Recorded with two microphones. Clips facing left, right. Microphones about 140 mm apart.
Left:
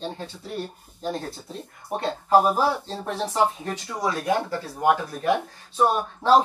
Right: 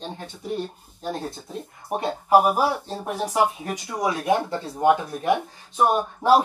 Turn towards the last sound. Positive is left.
turn(degrees=-15)  # may be behind; listen again after turning